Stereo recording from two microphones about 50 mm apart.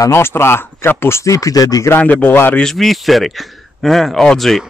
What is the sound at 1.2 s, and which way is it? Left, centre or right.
Speech, left.